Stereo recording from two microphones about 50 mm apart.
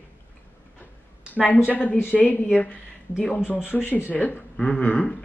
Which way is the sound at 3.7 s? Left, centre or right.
Left.